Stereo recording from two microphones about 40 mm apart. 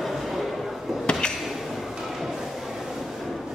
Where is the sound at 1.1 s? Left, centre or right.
Left.